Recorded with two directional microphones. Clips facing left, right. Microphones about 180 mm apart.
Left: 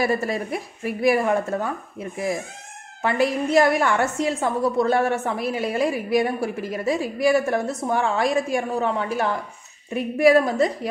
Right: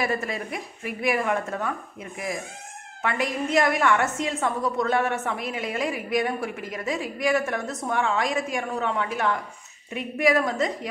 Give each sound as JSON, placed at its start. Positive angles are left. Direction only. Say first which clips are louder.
{"t": 0.0, "sound": "a woman's voice", "louder": "left 5 dB", "side_deg": 35}